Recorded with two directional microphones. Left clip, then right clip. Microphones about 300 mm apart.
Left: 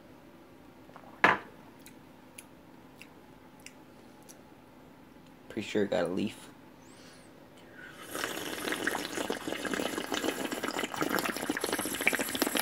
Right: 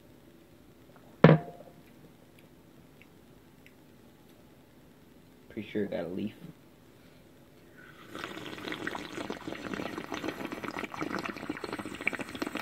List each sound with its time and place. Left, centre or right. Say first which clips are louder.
5.5 s speech: left 4 dB; left
8.2 s water: left 5 dB; centre